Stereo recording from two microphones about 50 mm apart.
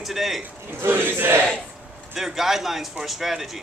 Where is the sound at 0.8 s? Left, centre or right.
Right.